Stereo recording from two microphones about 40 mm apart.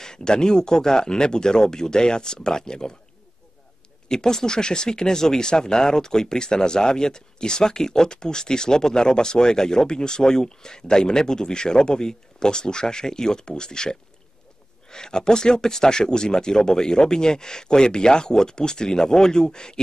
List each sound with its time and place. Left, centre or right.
0.0 s speech: centre
4.1 s speech: centre